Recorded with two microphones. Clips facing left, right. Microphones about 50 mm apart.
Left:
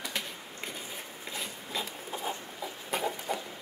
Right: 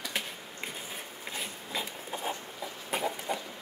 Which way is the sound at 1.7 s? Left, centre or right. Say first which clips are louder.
Even; centre.